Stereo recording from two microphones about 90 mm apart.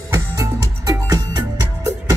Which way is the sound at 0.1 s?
40° right (ahead or behind).